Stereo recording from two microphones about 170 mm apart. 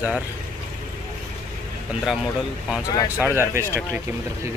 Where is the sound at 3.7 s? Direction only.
15° right (ahead or behind).